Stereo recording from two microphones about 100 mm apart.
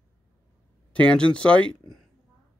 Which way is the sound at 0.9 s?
10° left (ahead or behind).